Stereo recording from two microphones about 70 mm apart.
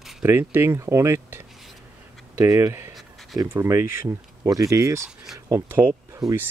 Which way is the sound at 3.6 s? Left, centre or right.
Right.